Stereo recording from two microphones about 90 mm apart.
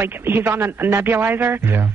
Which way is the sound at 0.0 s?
25° right (ahead or behind).